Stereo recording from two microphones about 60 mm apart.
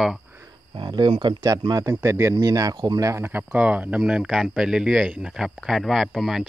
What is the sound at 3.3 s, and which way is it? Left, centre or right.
Speech, right.